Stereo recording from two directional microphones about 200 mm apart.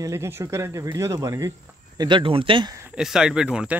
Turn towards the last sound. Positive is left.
turn(degrees=-5)  # may be behind; listen again after turning